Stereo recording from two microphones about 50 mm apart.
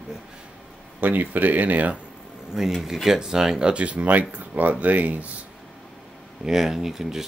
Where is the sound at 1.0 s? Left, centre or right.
Right.